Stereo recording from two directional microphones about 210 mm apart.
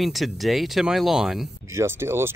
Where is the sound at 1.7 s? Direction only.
15° right (ahead or behind).